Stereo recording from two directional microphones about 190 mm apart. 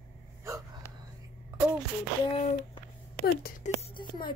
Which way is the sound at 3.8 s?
25° left (ahead or behind).